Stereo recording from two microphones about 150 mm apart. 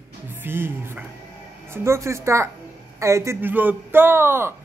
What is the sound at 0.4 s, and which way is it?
A man's voice, 15° right (ahead or behind).